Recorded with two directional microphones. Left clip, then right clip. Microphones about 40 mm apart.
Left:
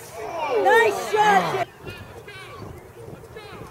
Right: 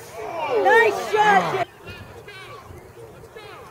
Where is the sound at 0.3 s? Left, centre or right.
Left.